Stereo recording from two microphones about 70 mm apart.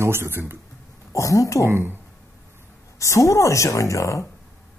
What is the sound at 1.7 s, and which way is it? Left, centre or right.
Speech, right.